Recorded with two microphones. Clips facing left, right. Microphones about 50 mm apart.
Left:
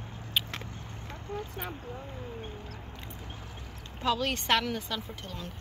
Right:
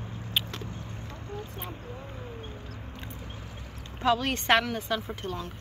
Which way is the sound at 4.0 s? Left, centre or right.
Centre.